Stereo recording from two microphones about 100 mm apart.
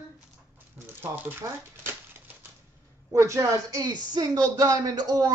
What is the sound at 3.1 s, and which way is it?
Speech, 30° right (ahead or behind).